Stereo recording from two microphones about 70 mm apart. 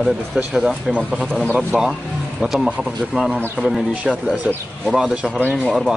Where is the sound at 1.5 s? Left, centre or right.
Centre.